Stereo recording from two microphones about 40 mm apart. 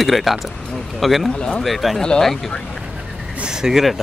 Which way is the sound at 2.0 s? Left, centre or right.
Centre.